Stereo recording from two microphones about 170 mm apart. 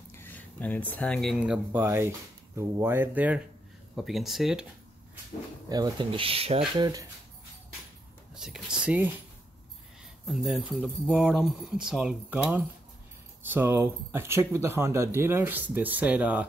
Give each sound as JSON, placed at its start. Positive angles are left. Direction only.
{"t": 0.1, "sound": "speech", "side_deg": 10}
{"t": 5.7, "sound": "speech", "side_deg": -25}
{"t": 6.8, "sound": "speech", "side_deg": -20}
{"t": 8.4, "sound": "speech", "side_deg": -5}
{"t": 10.2, "sound": "speech", "side_deg": 0}